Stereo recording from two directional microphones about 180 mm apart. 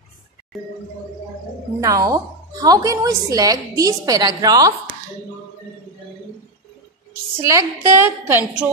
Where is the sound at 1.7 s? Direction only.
20° right (ahead or behind).